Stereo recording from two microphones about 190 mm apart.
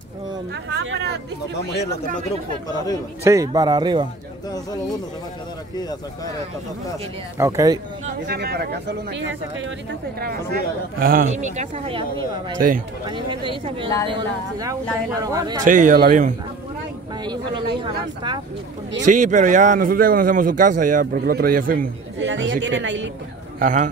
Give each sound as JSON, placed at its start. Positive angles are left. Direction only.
{"t": 0.7, "sound": "speech", "side_deg": -60}
{"t": 3.3, "sound": "speech", "side_deg": -20}
{"t": 7.3, "sound": "speech", "side_deg": -15}
{"t": 8.3, "sound": "speech", "side_deg": -55}
{"t": 11.0, "sound": "speech", "side_deg": -50}
{"t": 15.6, "sound": "a man's voice", "side_deg": -45}
{"t": 17.2, "sound": "speech", "side_deg": -25}
{"t": 19.0, "sound": "a man's voice", "side_deg": -40}
{"t": 22.2, "sound": "speech", "side_deg": -75}
{"t": 23.6, "sound": "a man's voice", "side_deg": -40}